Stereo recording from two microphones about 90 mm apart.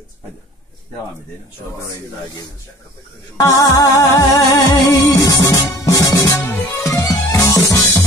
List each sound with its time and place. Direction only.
3.3 s music: 40° left (ahead or behind)